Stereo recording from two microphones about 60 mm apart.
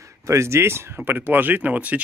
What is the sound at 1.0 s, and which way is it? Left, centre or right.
Speech, right.